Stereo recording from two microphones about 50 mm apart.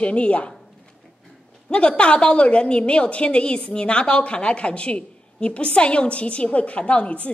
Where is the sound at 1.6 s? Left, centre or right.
Centre.